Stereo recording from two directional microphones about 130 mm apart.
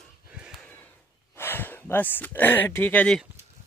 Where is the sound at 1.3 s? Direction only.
15° left (ahead or behind).